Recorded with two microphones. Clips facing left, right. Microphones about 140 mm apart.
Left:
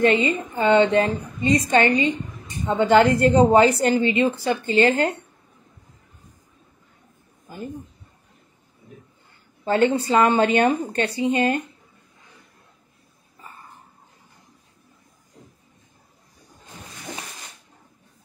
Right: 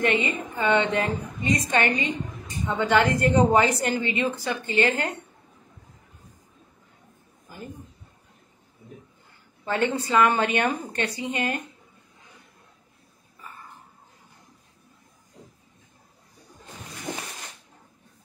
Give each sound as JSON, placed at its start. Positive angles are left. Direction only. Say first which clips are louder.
{"t": 0.0, "sound": "a woman's voice", "louder": "left 5 dB", "side_deg": 30}
{"t": 9.7, "sound": "a woman's voice", "louder": "left 6 dB", "side_deg": 30}